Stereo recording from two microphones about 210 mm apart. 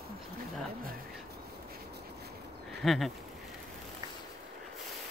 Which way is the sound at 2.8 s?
Centre (ahead or behind).